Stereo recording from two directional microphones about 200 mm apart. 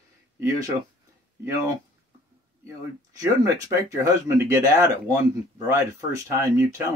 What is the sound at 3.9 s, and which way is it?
Speech, 15° right (ahead or behind).